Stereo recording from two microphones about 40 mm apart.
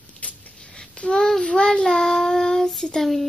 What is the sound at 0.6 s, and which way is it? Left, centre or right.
Child singing, left.